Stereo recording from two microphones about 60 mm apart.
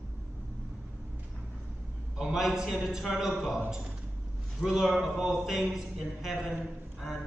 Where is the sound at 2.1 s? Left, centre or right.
Centre.